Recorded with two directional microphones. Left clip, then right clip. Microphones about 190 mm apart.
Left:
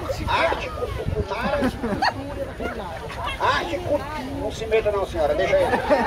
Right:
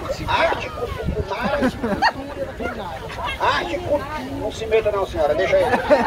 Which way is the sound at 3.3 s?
30° left (ahead or behind).